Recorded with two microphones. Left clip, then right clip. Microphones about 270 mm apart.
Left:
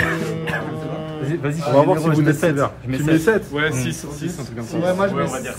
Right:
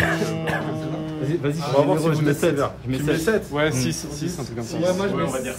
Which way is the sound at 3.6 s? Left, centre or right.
Right.